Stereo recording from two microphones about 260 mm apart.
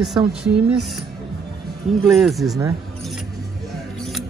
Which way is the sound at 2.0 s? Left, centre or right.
Centre.